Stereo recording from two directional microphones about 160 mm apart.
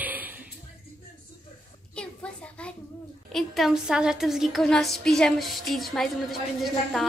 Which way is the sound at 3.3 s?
Centre (ahead or behind).